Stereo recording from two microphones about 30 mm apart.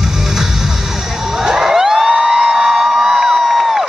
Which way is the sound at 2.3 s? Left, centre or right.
Centre.